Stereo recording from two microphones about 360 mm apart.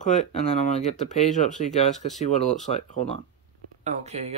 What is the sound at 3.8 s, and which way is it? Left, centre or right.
Speech, centre.